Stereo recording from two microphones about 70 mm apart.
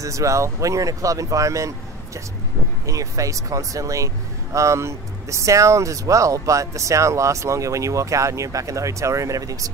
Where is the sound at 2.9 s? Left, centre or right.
Right.